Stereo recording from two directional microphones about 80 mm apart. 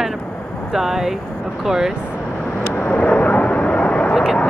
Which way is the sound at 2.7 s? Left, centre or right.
Left.